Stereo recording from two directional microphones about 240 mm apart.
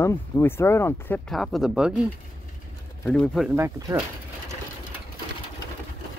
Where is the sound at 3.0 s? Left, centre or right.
Centre.